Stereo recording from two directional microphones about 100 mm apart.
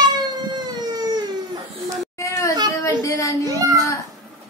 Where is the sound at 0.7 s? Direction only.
40° right (ahead or behind).